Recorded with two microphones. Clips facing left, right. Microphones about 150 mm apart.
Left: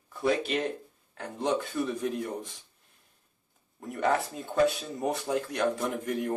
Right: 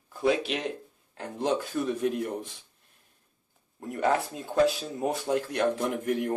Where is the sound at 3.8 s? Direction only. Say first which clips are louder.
Right 1 dB; 5° right (ahead or behind).